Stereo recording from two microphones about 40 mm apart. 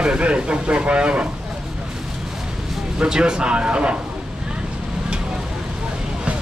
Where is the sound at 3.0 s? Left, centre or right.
Right.